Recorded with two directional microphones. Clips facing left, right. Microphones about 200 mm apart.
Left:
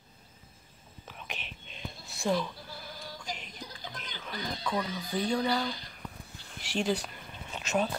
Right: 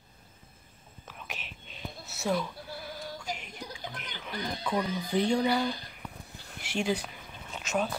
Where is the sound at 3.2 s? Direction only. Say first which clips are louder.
Right 3 dB; 10° right (ahead or behind).